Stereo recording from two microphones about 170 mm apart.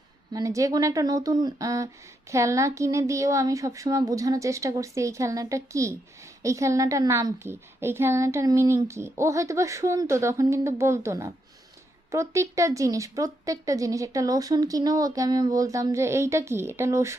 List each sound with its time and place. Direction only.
0.3 s a woman's voice: 20° right (ahead or behind)